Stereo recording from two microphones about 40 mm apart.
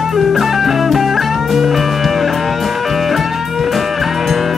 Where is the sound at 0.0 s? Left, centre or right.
Centre.